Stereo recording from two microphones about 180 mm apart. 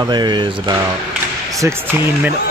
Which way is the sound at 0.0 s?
25° right (ahead or behind).